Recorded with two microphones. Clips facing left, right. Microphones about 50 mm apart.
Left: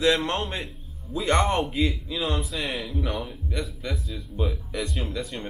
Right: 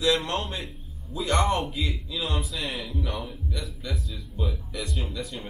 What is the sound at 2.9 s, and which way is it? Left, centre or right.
Speech, left.